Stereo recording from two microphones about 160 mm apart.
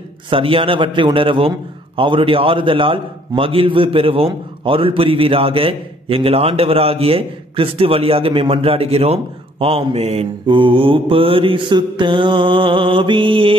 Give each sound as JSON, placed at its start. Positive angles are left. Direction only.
{"t": 0.3, "sound": "a man's voice", "side_deg": -35}